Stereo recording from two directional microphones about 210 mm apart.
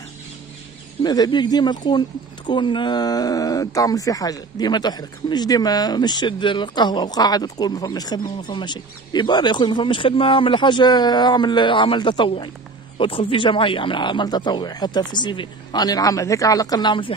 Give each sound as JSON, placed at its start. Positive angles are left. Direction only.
{"t": 1.0, "sound": "speech", "side_deg": 20}